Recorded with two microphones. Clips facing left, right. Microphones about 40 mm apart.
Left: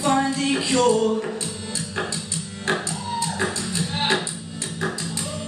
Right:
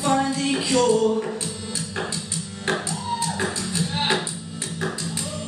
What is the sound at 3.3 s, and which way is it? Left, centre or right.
Music, centre.